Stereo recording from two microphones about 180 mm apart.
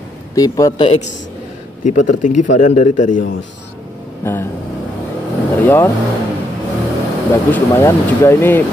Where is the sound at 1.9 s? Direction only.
45° left (ahead or behind).